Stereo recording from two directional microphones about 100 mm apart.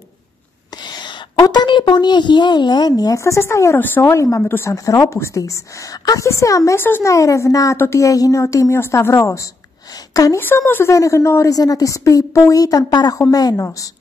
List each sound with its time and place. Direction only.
0.8 s a woman's voice: 45° left (ahead or behind)
10.4 s a woman's voice: 20° left (ahead or behind); by 13.7 s 40° left (ahead or behind)